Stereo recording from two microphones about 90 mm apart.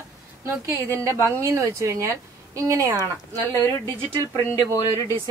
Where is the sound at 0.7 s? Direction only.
30° right (ahead or behind).